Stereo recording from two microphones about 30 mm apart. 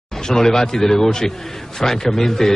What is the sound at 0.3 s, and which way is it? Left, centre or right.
A man's voice, centre.